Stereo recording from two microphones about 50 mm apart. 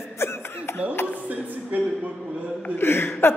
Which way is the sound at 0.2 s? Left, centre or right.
Left.